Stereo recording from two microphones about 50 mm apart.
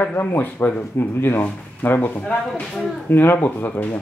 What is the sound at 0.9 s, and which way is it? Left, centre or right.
Speech, left.